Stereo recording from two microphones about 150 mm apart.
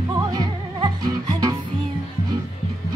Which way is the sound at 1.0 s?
25° right (ahead or behind).